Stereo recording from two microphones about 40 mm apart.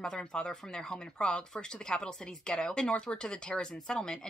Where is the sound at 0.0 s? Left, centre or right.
Centre.